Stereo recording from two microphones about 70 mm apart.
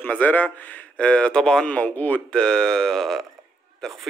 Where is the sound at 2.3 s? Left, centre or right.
Centre.